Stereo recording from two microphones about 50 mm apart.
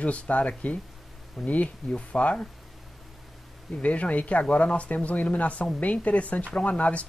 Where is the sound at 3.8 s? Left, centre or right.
Left.